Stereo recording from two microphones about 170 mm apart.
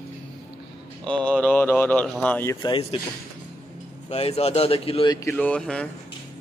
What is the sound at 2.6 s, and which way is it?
Speech, 30° left (ahead or behind).